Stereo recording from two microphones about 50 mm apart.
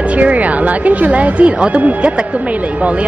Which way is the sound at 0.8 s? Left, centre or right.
Right.